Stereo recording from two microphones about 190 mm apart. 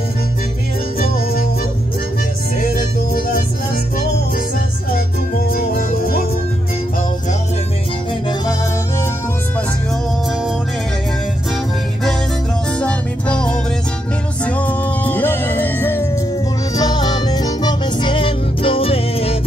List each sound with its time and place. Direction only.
0.9 s music: 50° left (ahead or behind)
2.6 s music: 50° left (ahead or behind)
5.5 s music: 50° left (ahead or behind)
12.7 s music: 5° left (ahead or behind); by 19.3 s 30° left (ahead or behind)